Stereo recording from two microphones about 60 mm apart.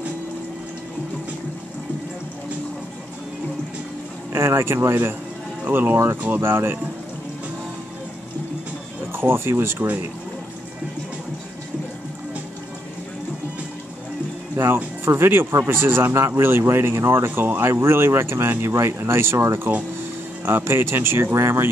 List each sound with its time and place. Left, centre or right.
4.3 s speech: right
9.1 s speech: right
15.0 s speech: right
16.1 s speech: right
19.3 s speech: right
20.4 s speech: right
21.3 s speech: right